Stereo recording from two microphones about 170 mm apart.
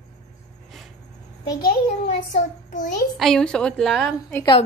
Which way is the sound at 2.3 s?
45° left (ahead or behind).